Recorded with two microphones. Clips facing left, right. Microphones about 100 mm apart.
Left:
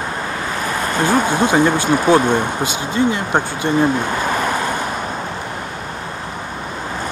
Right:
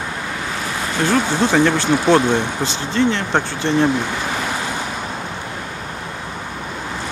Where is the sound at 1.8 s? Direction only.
50° left (ahead or behind).